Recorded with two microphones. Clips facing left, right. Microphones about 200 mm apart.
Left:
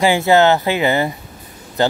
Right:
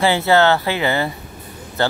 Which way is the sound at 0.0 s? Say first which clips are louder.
Left 2 dB; 15° left (ahead or behind).